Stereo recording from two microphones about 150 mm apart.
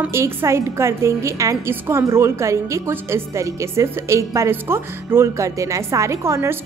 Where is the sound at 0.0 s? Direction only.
15° right (ahead or behind).